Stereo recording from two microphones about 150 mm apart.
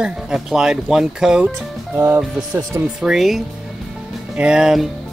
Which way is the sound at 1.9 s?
15° right (ahead or behind).